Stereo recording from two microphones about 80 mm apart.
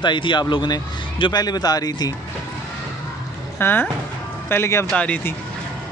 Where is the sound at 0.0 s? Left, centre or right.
Left.